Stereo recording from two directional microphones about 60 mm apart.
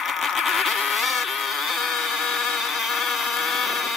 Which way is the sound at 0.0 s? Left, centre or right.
Centre.